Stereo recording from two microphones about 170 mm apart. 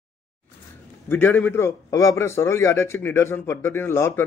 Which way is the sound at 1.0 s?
10° left (ahead or behind).